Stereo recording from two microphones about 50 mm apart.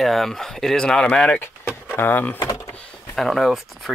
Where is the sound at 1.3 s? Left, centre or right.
Left.